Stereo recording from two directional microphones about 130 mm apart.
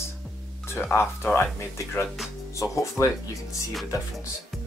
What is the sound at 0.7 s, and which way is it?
Speech, 15° left (ahead or behind).